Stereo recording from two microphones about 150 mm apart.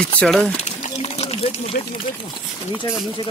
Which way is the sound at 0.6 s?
50° left (ahead or behind).